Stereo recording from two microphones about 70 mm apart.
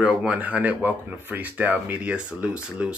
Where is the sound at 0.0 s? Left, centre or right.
Centre.